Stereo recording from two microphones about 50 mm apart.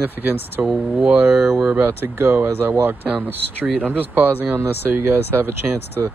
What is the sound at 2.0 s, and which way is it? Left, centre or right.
Speech, right.